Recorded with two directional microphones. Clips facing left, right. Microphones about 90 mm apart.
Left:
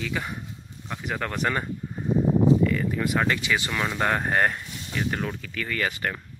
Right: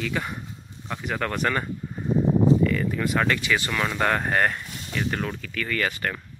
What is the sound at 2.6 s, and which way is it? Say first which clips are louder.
Speech: right 1 dB; 15° left (ahead or behind).